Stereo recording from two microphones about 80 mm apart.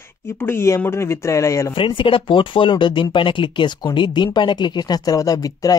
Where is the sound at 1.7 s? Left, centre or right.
Left.